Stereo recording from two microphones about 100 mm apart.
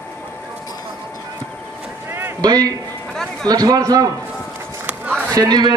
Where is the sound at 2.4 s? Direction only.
40° right (ahead or behind).